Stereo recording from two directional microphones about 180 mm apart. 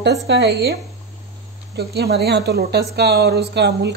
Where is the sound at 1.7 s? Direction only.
60° right (ahead or behind).